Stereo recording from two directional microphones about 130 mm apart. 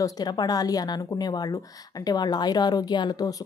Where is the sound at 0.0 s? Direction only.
30° left (ahead or behind).